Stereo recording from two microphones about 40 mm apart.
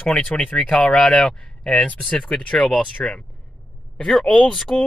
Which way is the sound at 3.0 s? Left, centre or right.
Left.